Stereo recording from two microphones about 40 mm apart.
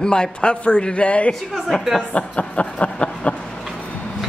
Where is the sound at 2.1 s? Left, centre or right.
Left.